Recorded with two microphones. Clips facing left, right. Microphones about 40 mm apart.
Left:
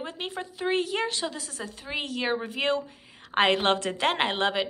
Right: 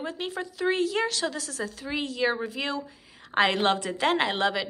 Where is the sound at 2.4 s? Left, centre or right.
Left.